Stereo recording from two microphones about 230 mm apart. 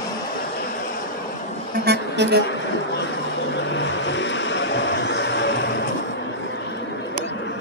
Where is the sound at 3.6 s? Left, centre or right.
Left.